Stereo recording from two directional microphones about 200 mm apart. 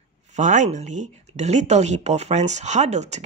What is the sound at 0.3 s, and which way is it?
A woman's voice, 40° right (ahead or behind).